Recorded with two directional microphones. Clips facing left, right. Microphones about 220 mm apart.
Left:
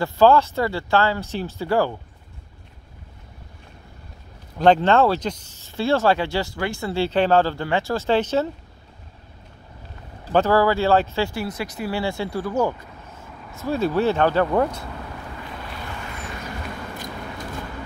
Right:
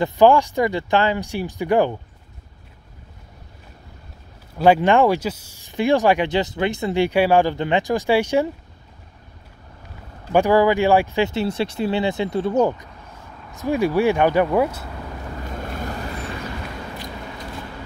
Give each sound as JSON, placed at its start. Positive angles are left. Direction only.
{"t": 0.0, "sound": "speech", "side_deg": -15}
{"t": 4.6, "sound": "speech", "side_deg": -10}
{"t": 10.3, "sound": "speech", "side_deg": -15}
{"t": 15.4, "sound": "boat", "side_deg": -45}